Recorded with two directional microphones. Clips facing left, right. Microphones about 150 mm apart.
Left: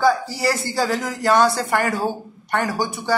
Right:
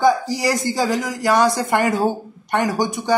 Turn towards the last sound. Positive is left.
turn(degrees=-20)  # may be behind; listen again after turning